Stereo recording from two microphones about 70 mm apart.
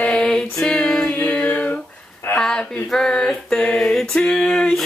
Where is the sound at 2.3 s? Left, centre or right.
Centre.